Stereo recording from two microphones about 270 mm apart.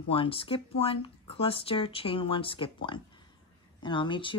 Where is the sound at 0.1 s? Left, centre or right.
Centre.